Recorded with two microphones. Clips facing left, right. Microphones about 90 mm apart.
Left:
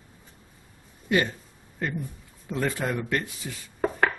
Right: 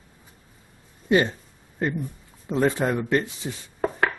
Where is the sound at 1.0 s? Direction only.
25° right (ahead or behind).